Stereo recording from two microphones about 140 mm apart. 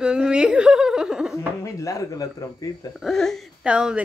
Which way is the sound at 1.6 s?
25° left (ahead or behind).